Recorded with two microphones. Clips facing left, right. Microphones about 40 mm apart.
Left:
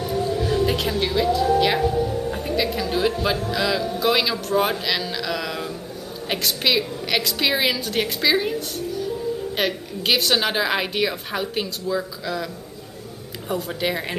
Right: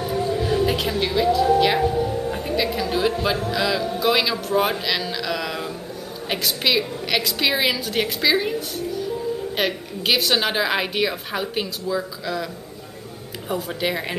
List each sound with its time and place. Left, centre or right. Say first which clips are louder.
0.0 s a sound: even; centre
0.7 s a woman's voice: even; centre
1.8 s music: even; centre
2.3 s a woman's voice: even; centre
13.5 s a woman's voice: even; centre